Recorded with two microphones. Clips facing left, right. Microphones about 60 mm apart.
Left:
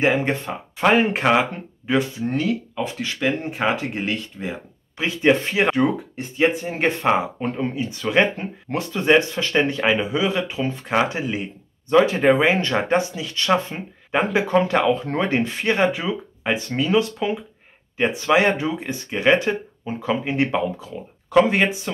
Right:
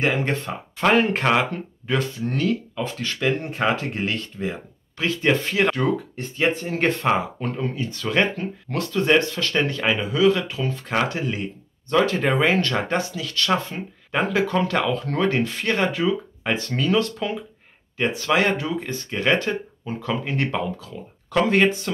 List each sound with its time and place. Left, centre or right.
0.0 s speech: centre